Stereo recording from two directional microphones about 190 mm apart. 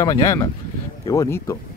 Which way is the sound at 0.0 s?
20° left (ahead or behind).